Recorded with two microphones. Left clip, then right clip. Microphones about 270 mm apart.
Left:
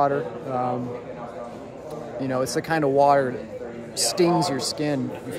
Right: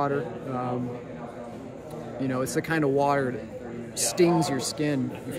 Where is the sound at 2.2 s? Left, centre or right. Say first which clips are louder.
Left 3 dB; centre.